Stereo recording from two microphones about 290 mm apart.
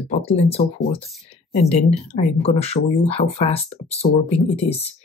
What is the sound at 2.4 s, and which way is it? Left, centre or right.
Speech, left.